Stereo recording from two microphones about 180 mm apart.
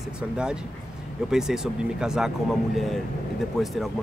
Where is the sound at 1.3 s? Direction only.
5° right (ahead or behind).